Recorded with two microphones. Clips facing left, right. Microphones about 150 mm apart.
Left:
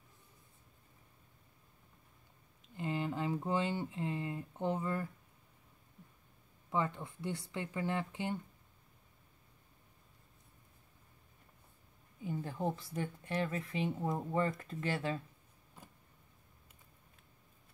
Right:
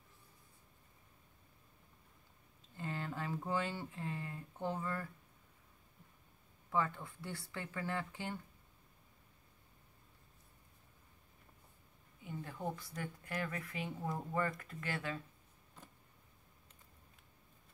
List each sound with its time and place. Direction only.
2.8 s speech: 20° left (ahead or behind)
6.7 s a woman's voice: 20° left (ahead or behind)
12.2 s a woman's voice: 30° left (ahead or behind)